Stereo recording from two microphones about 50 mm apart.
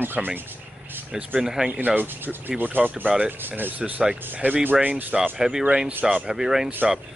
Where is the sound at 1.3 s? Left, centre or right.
Centre.